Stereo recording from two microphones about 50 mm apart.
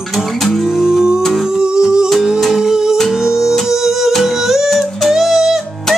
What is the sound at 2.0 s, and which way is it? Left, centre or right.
Music, centre.